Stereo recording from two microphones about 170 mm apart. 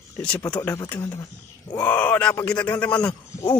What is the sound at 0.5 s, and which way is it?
A man's voice, 10° left (ahead or behind).